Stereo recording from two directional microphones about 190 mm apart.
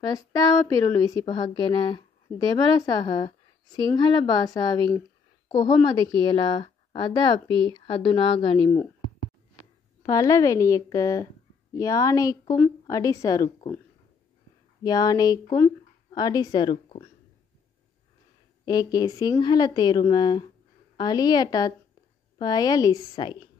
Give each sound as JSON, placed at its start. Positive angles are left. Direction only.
{"t": 0.0, "sound": "a woman's voice", "side_deg": 20}
{"t": 10.0, "sound": "a woman's voice", "side_deg": 20}
{"t": 14.8, "sound": "a woman's voice", "side_deg": 20}
{"t": 18.7, "sound": "a woman's voice", "side_deg": 20}